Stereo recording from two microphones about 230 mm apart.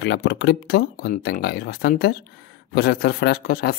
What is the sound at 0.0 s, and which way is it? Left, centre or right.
Speech, left.